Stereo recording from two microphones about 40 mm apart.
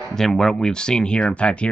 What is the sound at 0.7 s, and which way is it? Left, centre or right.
Speech, left.